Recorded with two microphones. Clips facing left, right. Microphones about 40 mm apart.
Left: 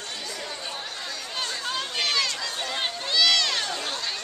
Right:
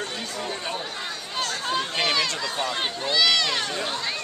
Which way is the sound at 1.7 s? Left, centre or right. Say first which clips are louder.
Right 3 dB; centre.